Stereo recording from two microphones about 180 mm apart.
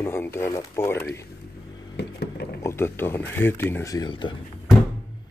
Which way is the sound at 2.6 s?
15° left (ahead or behind).